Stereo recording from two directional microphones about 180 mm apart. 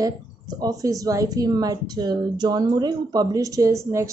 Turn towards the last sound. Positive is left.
turn(degrees=-20)  # may be behind; listen again after turning